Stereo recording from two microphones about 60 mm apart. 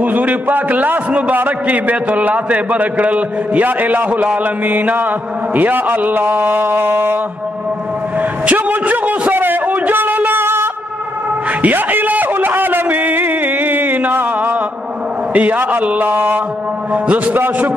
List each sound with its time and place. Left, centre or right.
0.0 s a man's voice: right
8.2 s a sound: right
15.3 s a man's voice: right